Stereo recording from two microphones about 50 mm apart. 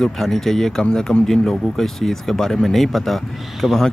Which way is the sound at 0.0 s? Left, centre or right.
Centre.